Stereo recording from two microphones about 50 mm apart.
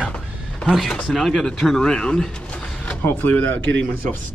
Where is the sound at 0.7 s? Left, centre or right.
Centre.